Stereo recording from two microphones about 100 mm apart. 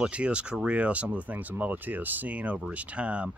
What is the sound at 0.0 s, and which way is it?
Speech, 10° right (ahead or behind).